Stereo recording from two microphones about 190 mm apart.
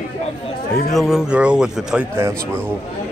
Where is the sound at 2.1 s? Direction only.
15° right (ahead or behind).